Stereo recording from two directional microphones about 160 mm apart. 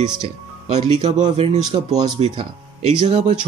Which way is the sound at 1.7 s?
30° right (ahead or behind).